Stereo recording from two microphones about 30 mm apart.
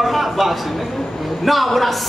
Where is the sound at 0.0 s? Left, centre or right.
Centre.